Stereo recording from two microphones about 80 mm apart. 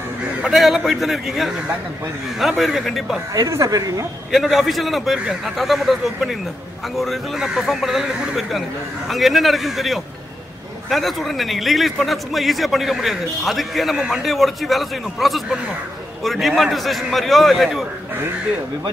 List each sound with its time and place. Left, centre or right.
0.4 s a man's voice: centre
3.3 s speech: right
4.3 s a man's voice: centre